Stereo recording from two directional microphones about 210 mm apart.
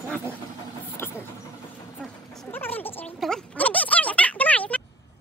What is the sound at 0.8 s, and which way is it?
Vehicle, 10° left (ahead or behind).